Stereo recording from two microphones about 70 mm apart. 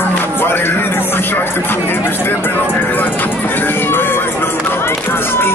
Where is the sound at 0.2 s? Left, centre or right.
Left.